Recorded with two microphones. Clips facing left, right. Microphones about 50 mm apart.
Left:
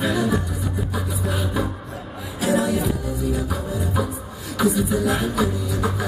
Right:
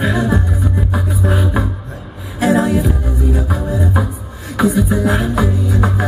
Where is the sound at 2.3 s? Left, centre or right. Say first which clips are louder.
Right 7 dB; right.